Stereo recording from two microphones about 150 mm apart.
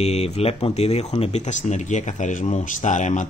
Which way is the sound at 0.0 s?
45° left (ahead or behind).